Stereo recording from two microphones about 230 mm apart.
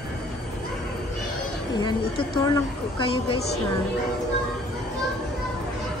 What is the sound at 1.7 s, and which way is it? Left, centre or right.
Speech, centre.